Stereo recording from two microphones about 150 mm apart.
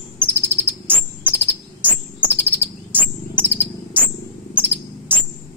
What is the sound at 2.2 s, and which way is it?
Chirp, 10° right (ahead or behind).